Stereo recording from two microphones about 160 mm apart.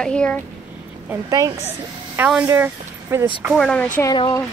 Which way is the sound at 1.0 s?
20° right (ahead or behind).